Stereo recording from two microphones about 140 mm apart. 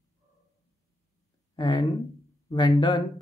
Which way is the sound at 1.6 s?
35° left (ahead or behind).